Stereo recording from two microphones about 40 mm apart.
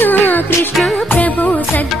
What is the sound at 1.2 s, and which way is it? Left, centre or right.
Music, left.